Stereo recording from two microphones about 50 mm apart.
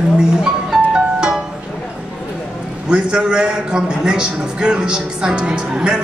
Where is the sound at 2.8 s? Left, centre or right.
Centre.